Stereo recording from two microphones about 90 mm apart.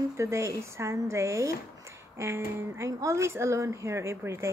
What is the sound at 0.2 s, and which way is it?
Speech, 35° right (ahead or behind).